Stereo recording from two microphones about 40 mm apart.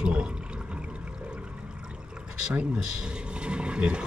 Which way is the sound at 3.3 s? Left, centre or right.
Right.